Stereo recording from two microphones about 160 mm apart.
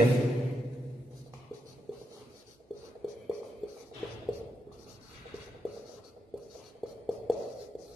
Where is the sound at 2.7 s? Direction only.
Centre (ahead or behind).